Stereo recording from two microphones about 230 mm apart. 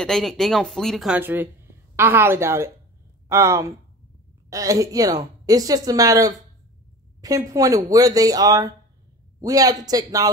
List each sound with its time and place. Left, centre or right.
0.0 s speech: centre